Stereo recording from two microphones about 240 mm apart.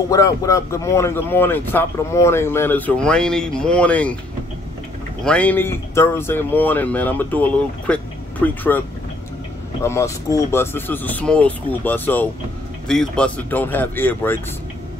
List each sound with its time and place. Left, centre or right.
0.1 s speech: centre
5.2 s speech: centre
9.8 s speech: centre